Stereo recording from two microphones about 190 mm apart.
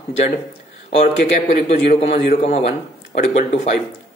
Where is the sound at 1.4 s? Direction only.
35° left (ahead or behind).